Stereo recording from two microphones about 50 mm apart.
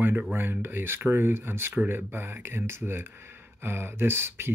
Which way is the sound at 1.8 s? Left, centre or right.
Right.